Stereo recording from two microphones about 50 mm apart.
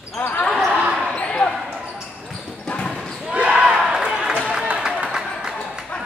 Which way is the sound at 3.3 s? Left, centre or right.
Right.